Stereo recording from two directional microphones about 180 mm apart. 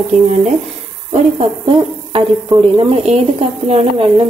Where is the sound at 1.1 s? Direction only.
35° right (ahead or behind).